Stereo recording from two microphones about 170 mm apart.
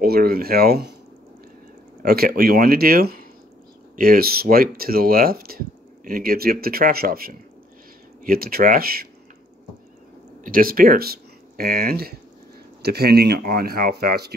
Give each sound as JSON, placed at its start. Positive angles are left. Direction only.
{"t": 0.0, "sound": "speech", "side_deg": -65}
{"t": 2.0, "sound": "speech", "side_deg": -60}
{"t": 10.4, "sound": "speech", "side_deg": -55}